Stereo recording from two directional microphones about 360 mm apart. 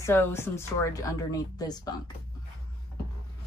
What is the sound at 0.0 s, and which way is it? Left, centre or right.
Speech, centre.